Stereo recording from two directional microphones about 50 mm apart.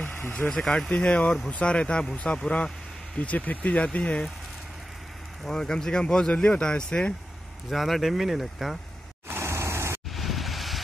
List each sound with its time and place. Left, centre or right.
0.5 s speech: centre
3.2 s speech: left
5.4 s speech: centre
7.7 s speech: centre
9.4 s a sound: right
10.1 s wind: centre